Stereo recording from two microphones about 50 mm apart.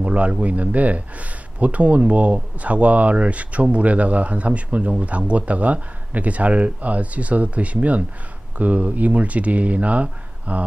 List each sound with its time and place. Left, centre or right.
0.0 s speech: right